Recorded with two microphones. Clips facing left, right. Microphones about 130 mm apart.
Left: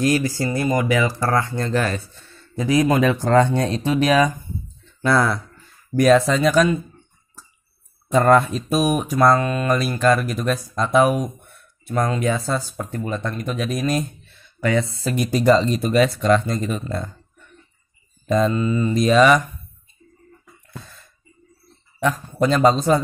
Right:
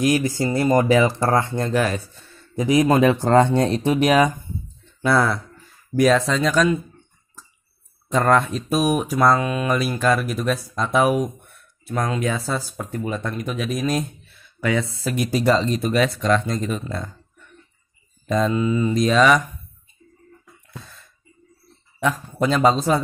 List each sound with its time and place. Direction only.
0.0 s speech: 20° right (ahead or behind)
5.0 s speech: 5° right (ahead or behind)
8.1 s speech: 5° left (ahead or behind)
18.2 s mantra: 5° left (ahead or behind)
18.5 s speech: 10° right (ahead or behind)
22.0 s speech: centre (ahead or behind)